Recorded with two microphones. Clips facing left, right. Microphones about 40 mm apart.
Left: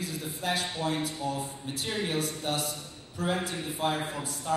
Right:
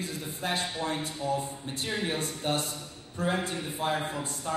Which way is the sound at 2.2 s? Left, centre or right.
Right.